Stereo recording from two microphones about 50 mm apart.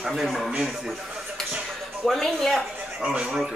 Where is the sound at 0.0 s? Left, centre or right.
Centre.